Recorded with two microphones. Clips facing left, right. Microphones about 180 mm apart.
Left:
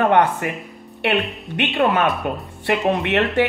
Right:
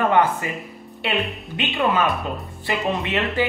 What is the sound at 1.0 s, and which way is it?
Speech, centre (ahead or behind).